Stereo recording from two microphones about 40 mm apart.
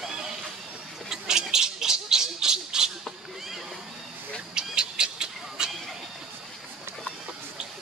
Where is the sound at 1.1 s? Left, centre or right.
Centre.